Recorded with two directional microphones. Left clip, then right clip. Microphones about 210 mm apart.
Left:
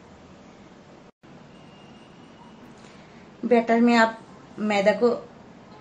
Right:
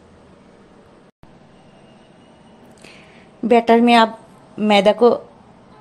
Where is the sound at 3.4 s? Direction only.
35° right (ahead or behind).